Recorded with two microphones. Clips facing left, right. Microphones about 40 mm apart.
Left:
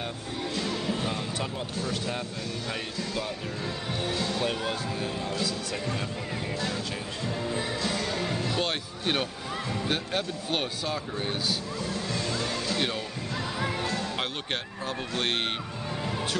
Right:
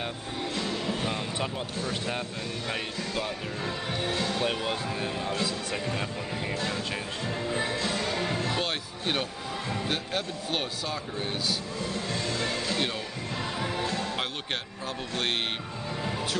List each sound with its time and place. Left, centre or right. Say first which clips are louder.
0.7 s music: left 1 dB; centre
1.9 s speech: right 1 dB; centre
7.8 s music: even; centre
8.5 s speech: left 1 dB; centre
14.1 s a man's voice: left 1 dB; centre